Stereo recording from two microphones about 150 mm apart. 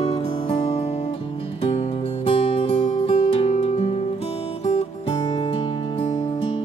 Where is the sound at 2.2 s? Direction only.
35° left (ahead or behind).